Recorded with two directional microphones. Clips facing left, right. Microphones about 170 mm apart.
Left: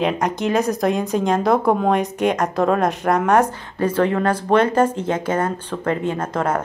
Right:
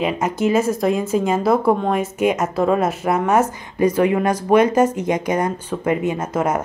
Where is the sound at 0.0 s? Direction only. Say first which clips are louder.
Right 1 dB; 5° right (ahead or behind).